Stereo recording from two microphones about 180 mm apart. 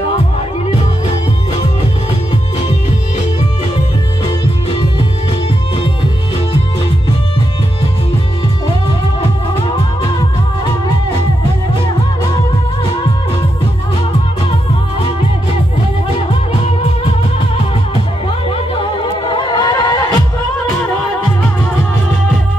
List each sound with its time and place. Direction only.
19.2 s music: 25° left (ahead or behind)